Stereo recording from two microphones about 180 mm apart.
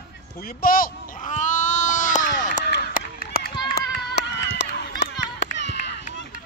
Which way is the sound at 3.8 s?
70° left (ahead or behind).